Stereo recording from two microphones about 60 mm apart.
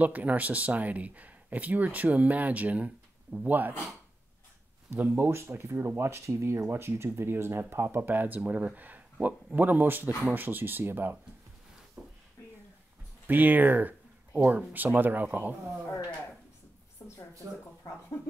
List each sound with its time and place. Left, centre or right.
0.0 s speech: right
4.9 s speech: right
12.0 s a sound: right
13.3 s speech: right
17.4 s speech: right